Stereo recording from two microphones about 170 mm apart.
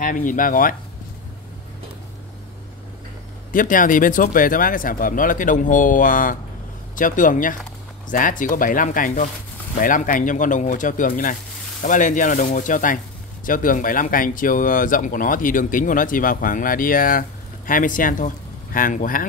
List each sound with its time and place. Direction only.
0.0 s speech: 50° left (ahead or behind)
3.5 s speech: 50° left (ahead or behind)